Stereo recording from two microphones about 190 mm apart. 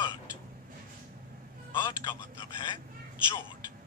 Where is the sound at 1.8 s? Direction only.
25° left (ahead or behind).